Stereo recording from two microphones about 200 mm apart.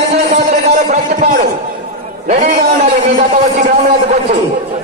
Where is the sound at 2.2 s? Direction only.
35° right (ahead or behind).